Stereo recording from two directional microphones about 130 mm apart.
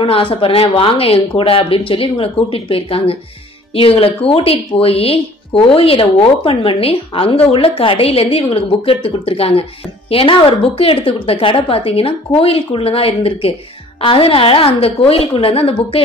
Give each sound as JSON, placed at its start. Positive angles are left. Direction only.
{"t": 0.0, "sound": "a woman's voice", "side_deg": 45}